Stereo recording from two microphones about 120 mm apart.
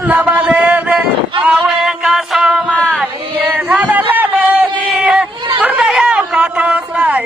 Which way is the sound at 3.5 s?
15° right (ahead or behind).